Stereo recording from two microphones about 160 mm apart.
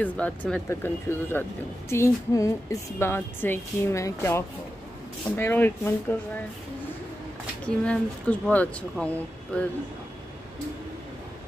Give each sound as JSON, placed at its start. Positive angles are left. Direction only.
{"t": 0.0, "sound": "speech", "side_deg": 10}
{"t": 7.6, "sound": "speech", "side_deg": 5}